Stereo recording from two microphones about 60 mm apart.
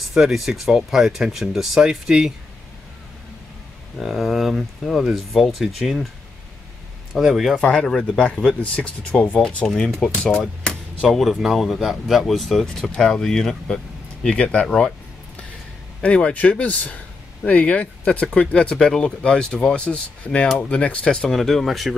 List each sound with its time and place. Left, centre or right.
0.1 s speech: centre
4.0 s speech: centre
7.2 s speech: centre
7.6 s speech: centre
9.7 s speech: centre
10.6 s a sound: centre
11.1 s speech: centre
14.2 s speech: centre
16.0 s speech: centre